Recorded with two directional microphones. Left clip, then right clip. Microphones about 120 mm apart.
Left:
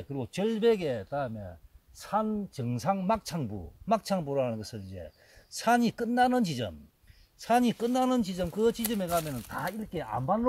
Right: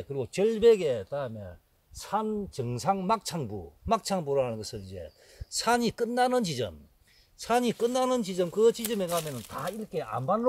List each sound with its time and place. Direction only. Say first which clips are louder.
0.0 s speech: right 5 dB; 30° right (ahead or behind)
9.5 s speech: even; 25° right (ahead or behind)